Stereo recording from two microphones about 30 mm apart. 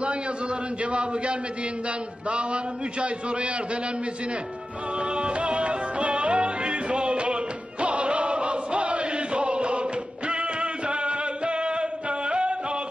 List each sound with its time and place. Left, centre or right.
0.0 s a man's voice: right
4.9 s music: right